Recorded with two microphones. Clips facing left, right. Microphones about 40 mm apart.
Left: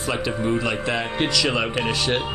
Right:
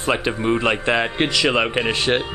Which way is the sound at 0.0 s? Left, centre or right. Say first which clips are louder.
Right 3 dB; right.